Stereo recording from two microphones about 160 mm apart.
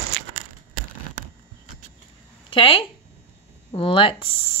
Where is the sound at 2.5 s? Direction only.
35° left (ahead or behind).